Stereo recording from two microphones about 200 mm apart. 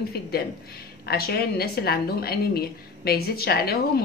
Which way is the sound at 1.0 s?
50° left (ahead or behind).